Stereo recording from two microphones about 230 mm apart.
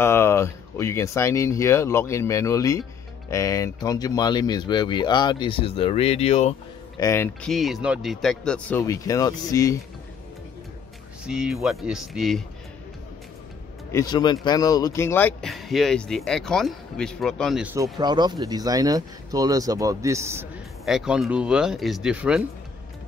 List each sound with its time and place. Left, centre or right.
0.0 s speech: centre; by 6.5 s left
7.0 s speech: centre
7.4 s a man's voice: centre
11.2 s a man's voice: centre
13.9 s a man's voice: centre
17.9 s a man's voice: centre